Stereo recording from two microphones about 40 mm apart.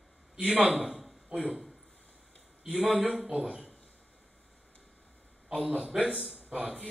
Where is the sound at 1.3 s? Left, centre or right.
Right.